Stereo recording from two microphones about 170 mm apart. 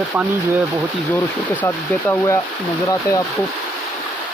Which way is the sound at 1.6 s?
15° left (ahead or behind).